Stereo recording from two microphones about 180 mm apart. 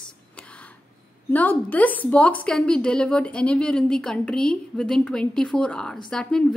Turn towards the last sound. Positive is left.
turn(degrees=5)  # may be behind; listen again after turning